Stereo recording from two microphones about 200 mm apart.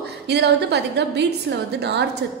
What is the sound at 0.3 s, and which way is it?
A woman's voice, 55° right (ahead or behind).